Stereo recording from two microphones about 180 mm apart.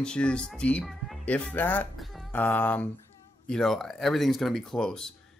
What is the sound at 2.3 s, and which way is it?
Speech, 10° left (ahead or behind).